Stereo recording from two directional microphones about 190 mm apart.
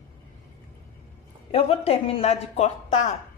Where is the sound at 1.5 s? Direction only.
30° left (ahead or behind).